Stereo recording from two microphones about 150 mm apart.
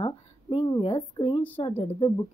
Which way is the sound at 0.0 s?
35° left (ahead or behind).